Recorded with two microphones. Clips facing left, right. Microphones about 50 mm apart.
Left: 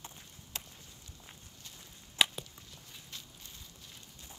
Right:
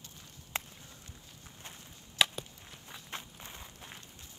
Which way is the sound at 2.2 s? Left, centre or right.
Centre.